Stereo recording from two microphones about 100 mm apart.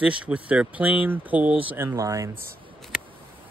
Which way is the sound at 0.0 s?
10° right (ahead or behind).